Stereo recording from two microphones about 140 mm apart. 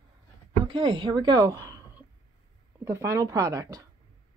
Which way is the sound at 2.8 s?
20° right (ahead or behind).